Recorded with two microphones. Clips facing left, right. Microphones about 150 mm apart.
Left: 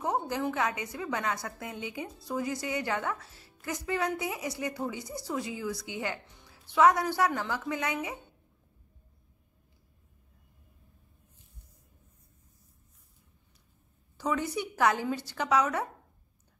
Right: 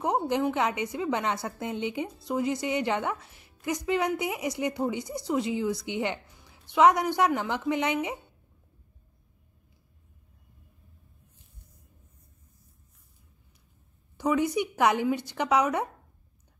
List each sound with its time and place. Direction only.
0.0 s a woman's voice: 20° right (ahead or behind)
14.1 s a woman's voice: 15° right (ahead or behind)